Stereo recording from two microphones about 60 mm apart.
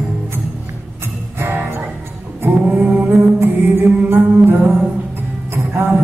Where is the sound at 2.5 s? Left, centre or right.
Right.